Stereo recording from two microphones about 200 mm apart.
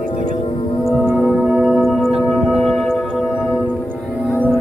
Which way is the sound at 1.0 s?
Centre (ahead or behind).